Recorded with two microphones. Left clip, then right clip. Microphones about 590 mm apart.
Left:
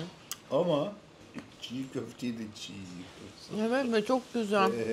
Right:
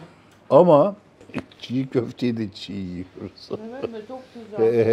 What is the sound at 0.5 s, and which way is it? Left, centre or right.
Speech, right.